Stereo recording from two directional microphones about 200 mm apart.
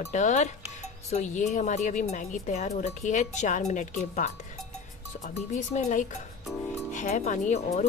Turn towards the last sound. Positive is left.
turn(degrees=35)  # may be behind; listen again after turning